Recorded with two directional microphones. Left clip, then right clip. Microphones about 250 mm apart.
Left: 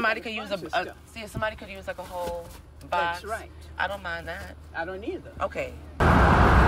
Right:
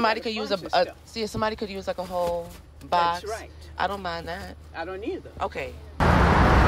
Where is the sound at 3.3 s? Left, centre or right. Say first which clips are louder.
Even; right.